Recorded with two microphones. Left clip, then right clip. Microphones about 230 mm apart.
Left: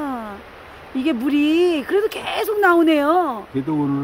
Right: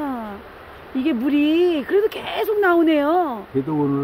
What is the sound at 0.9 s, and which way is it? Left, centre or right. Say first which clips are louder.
Speech: even; centre.